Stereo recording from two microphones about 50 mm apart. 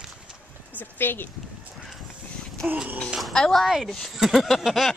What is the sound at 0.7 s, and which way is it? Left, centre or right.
Speech, left.